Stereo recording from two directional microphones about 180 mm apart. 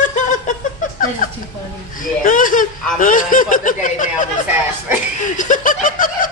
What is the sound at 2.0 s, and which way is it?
Speech, 50° left (ahead or behind).